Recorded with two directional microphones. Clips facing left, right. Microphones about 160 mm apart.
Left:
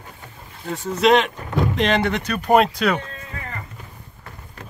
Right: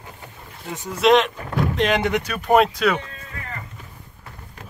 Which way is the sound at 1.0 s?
Centre (ahead or behind).